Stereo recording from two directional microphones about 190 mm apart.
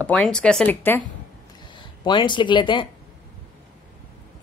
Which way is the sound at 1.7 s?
25° left (ahead or behind).